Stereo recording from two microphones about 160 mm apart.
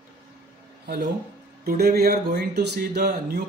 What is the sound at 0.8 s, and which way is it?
Speech, 60° right (ahead or behind).